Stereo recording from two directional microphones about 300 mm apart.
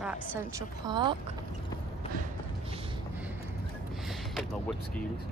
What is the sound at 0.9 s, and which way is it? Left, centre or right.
Speech, centre.